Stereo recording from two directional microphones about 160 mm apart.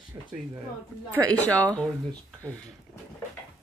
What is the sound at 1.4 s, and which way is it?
Speech, 10° left (ahead or behind).